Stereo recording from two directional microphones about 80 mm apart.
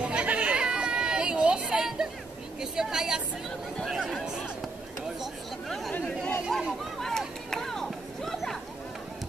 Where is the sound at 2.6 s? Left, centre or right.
Centre.